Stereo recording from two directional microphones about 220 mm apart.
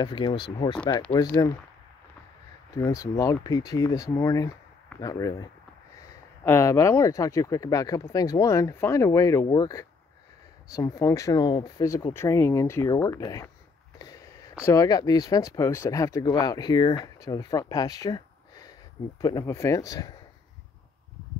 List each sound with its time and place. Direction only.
0.0 s speech: 20° left (ahead or behind)
2.7 s speech: 15° left (ahead or behind)
13.9 s a sound: 15° left (ahead or behind)
14.6 s speech: 15° left (ahead or behind)